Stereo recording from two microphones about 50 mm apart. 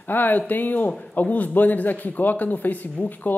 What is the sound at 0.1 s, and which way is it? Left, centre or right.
Speech, left.